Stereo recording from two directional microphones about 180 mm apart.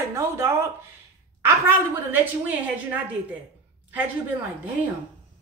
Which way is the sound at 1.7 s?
10° right (ahead or behind).